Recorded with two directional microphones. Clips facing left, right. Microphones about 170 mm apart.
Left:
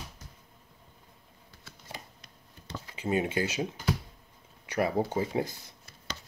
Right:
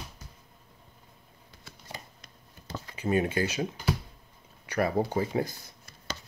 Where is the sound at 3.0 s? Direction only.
20° left (ahead or behind).